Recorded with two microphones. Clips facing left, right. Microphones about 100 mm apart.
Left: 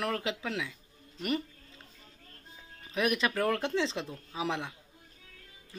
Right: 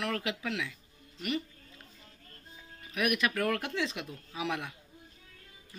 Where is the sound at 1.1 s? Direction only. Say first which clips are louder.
Left 2 dB; 40° left (ahead or behind).